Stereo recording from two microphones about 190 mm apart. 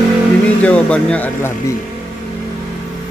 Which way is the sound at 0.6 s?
5° left (ahead or behind).